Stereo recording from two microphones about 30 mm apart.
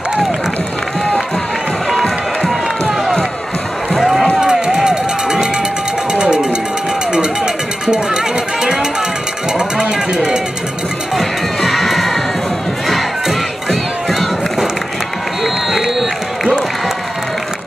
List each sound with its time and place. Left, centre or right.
4.4 s run: right
6.1 s a sound: right
7.1 s music: right
9.5 s a sound: right
11.1 s crowd: centre
15.4 s run: centre